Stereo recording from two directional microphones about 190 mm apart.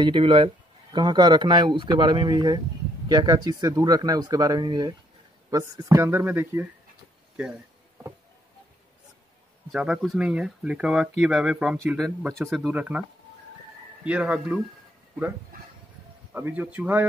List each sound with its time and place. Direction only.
0.0 s speech: 25° right (ahead or behind)
9.7 s speech: 5° right (ahead or behind)
14.0 s speech: 5° right (ahead or behind)
16.3 s speech: 10° right (ahead or behind)